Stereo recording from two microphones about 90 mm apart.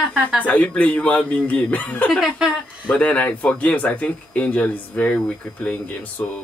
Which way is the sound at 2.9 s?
15° left (ahead or behind).